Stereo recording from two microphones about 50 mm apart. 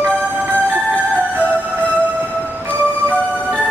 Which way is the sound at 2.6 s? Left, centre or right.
Right.